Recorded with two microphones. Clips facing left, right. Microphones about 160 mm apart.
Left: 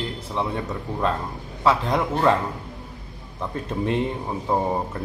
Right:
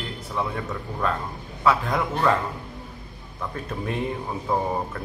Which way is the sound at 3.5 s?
25° left (ahead or behind).